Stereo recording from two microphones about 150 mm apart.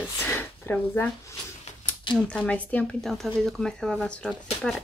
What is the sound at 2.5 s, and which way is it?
Speech, 10° left (ahead or behind).